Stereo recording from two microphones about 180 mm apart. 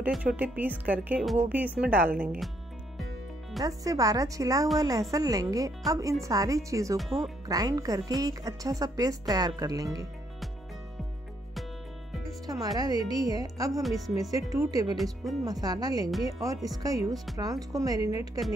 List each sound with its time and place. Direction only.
0.0 s speech: 5° right (ahead or behind)
3.6 s speech: 20° right (ahead or behind)
12.3 s speech: 20° right (ahead or behind)
13.8 s speech: centre (ahead or behind)
14.5 s speech: 20° right (ahead or behind)